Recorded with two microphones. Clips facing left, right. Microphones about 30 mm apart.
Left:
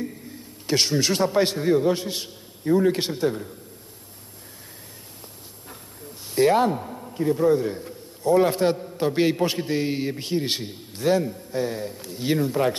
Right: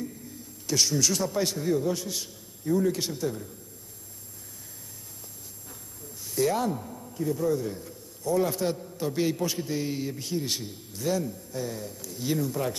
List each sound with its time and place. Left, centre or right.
0.0 s a man's voice: left
5.7 s a man's voice: left